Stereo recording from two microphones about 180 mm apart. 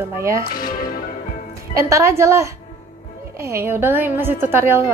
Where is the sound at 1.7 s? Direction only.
15° right (ahead or behind).